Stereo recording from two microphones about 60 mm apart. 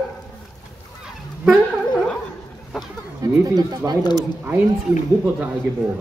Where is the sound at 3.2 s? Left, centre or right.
Right.